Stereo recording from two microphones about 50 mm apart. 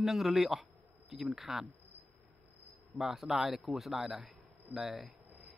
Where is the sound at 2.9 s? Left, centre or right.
Centre.